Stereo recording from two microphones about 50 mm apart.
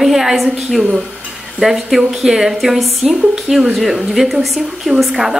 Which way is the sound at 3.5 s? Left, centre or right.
Right.